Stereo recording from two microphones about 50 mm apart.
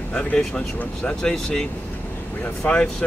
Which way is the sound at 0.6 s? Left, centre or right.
Left.